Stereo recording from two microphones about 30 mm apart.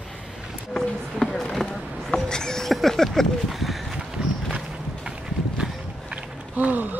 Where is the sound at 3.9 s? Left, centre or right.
Right.